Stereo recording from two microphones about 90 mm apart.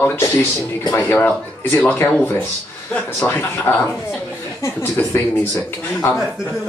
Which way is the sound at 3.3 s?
25° left (ahead or behind).